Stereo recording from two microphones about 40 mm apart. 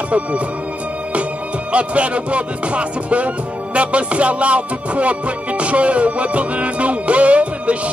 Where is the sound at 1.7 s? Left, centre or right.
Right.